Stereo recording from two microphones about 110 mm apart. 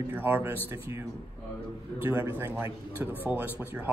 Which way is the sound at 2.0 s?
20° right (ahead or behind).